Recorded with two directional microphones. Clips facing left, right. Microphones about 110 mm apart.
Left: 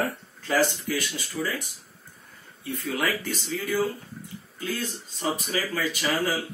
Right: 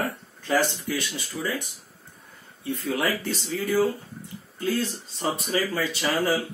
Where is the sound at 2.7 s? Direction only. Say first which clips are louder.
Right 2 dB; 20° right (ahead or behind).